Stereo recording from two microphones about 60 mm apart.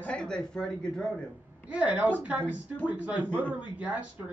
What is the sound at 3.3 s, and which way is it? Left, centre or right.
Speech, left.